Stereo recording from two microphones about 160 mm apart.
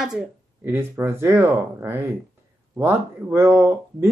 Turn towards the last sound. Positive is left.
turn(degrees=-15)  # may be behind; listen again after turning